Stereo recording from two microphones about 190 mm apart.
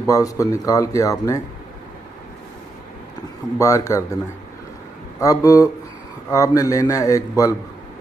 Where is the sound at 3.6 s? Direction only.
15° left (ahead or behind).